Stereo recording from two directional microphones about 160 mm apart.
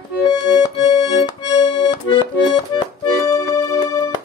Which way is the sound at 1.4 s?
30° left (ahead or behind).